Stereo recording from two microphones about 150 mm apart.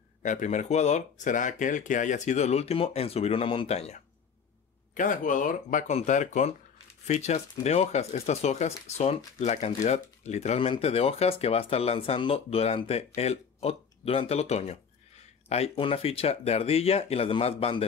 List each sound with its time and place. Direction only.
0.2 s speech: 55° left (ahead or behind)
4.9 s speech: 60° left (ahead or behind); by 17.8 s 40° left (ahead or behind)